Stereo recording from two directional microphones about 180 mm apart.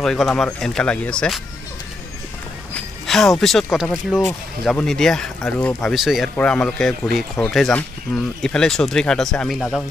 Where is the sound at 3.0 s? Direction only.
Centre (ahead or behind).